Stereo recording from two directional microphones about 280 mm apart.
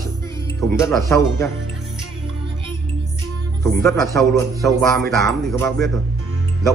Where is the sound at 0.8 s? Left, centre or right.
Centre.